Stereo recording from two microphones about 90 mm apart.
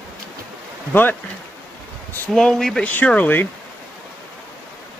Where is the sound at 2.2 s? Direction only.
5° left (ahead or behind).